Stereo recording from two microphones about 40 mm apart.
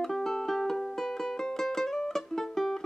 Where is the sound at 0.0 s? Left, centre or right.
Centre.